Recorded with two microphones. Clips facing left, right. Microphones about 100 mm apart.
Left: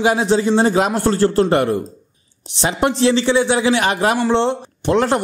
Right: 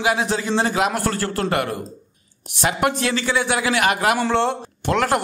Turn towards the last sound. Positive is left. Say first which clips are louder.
# left 4 dB
turn(degrees=25)  # may be behind; listen again after turning